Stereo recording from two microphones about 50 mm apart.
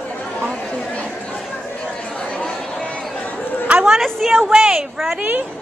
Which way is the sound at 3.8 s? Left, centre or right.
Centre.